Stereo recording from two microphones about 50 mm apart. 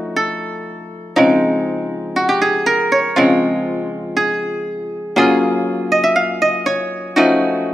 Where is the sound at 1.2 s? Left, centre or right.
Centre.